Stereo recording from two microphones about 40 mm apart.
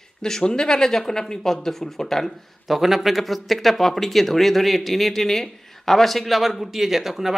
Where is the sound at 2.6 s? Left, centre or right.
Centre.